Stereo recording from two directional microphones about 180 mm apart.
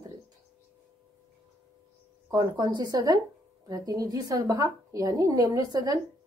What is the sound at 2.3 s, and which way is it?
A woman's voice, 20° right (ahead or behind).